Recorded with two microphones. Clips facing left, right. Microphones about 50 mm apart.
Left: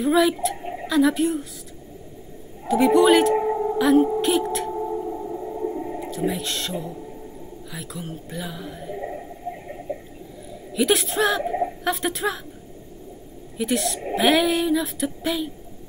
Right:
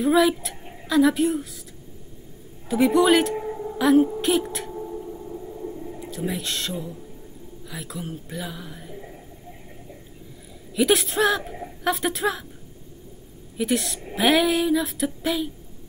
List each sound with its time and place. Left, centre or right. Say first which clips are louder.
0.0 s speech: even; centre
2.7 s speech: left 2 dB; centre
3.3 s a sound: left 8 dB; left
3.7 s speech: right 1 dB; centre
4.2 s a sound: left 2 dB; centre
4.7 s music: left 6 dB; left
5.9 s speech: left 4 dB; centre
8.9 s a sound: left 9 dB; left
10.7 s speech: even; centre
13.6 s speech: left 1 dB; centre